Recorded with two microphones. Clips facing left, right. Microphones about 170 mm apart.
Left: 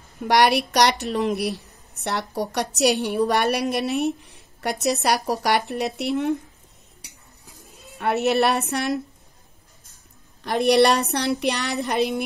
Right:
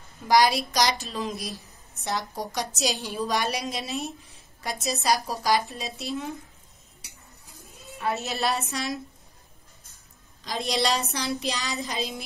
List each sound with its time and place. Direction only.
0.2 s speech: 70° left (ahead or behind)
8.0 s speech: 65° left (ahead or behind)
10.4 s speech: 65° left (ahead or behind)